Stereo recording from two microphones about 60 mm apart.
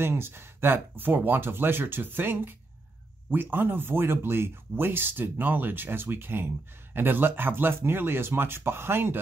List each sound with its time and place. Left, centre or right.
0.0 s speech: right